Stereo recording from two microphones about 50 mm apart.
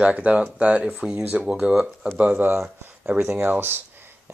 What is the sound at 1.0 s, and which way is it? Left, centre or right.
Speech, centre.